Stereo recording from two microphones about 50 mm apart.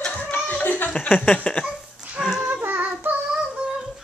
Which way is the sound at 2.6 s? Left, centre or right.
Right.